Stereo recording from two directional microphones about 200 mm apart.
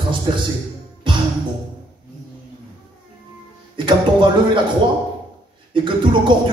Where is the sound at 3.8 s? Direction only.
25° right (ahead or behind).